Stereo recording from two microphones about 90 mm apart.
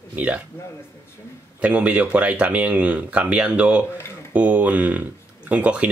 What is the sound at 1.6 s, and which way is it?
Speech, 15° right (ahead or behind).